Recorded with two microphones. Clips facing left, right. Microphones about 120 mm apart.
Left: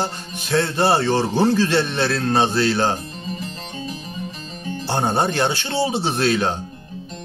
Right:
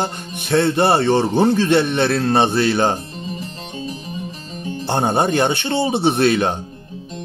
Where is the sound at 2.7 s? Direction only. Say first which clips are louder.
Right 3 dB; 20° right (ahead or behind).